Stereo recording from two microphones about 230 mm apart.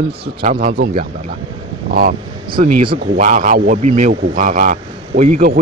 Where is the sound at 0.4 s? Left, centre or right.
Right.